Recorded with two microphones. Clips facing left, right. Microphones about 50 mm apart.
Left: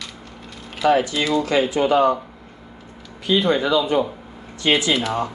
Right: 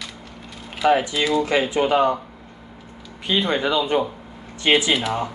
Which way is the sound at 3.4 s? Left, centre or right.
Right.